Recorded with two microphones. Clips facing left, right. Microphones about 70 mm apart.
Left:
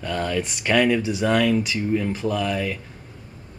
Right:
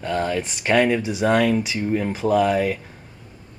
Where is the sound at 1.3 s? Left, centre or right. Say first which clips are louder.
Right 2 dB; right.